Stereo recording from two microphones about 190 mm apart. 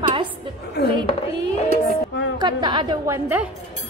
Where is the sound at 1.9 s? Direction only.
70° left (ahead or behind).